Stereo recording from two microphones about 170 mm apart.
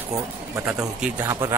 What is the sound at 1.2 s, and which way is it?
Speech, 20° right (ahead or behind).